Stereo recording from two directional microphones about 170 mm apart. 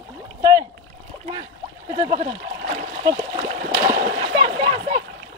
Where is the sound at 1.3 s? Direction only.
30° right (ahead or behind).